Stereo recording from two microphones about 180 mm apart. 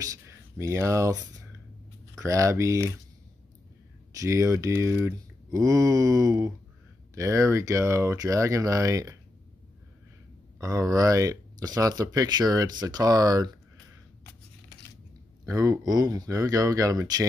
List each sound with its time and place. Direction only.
0.0 s speech: 15° right (ahead or behind)
4.1 s speech: 15° right (ahead or behind)
10.6 s speech: 20° right (ahead or behind)
15.4 s speech: 15° right (ahead or behind)